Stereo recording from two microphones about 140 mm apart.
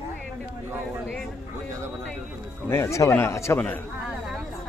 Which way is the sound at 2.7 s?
20° left (ahead or behind).